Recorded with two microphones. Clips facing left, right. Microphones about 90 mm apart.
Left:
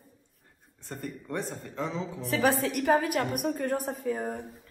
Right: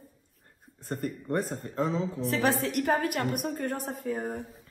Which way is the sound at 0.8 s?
45° right (ahead or behind).